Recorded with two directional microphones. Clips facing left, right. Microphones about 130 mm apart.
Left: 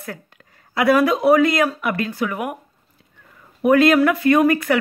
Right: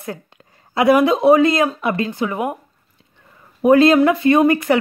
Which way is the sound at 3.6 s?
25° right (ahead or behind).